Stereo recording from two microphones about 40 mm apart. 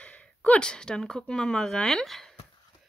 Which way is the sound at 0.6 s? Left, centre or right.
Left.